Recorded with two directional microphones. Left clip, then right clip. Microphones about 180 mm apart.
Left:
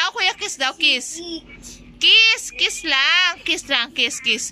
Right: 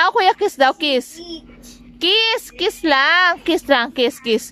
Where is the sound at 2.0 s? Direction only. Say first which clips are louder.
Left 3 dB; 45° right (ahead or behind).